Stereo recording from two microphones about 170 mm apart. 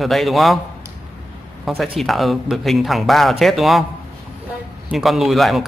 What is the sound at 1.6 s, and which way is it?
Speech, centre (ahead or behind).